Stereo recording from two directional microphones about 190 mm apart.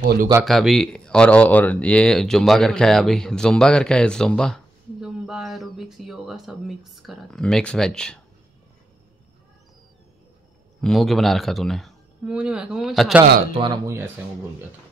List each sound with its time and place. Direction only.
0.0 s a man's voice: 45° right (ahead or behind)
0.5 s speech: centre (ahead or behind)
10.8 s speech: centre (ahead or behind)
13.6 s speech: 20° right (ahead or behind)